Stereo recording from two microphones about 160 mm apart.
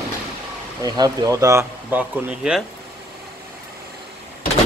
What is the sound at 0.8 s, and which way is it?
Speech, 25° right (ahead or behind).